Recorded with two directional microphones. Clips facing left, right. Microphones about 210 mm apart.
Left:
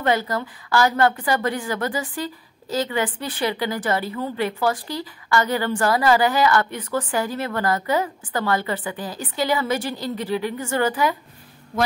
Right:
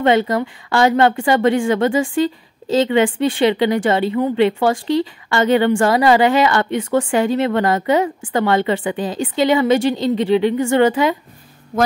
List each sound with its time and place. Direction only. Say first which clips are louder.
0.0 s speech: right 7 dB; 25° right (ahead or behind)